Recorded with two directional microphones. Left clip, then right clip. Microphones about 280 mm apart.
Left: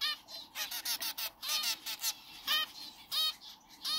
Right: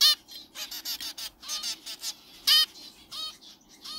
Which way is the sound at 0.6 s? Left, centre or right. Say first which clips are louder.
Right 2 dB; centre.